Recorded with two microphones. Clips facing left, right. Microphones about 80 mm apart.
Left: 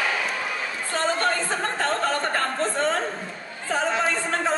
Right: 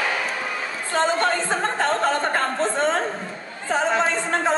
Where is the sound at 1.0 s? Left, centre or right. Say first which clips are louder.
Right 3 dB; right.